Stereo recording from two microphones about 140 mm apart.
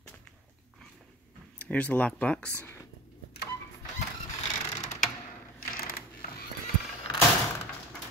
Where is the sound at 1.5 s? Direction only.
10° left (ahead or behind).